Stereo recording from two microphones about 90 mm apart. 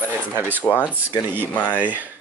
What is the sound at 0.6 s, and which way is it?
Speech, 20° left (ahead or behind).